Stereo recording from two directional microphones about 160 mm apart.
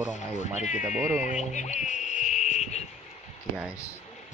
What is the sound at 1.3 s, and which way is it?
Insect, 50° left (ahead or behind).